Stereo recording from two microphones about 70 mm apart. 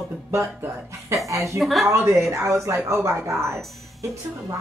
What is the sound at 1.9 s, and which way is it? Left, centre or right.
Speech, right.